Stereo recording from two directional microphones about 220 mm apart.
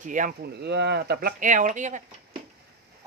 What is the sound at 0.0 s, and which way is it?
Speech, 35° right (ahead or behind).